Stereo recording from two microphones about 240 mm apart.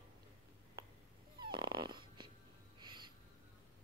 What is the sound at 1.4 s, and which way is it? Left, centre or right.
Dog, centre.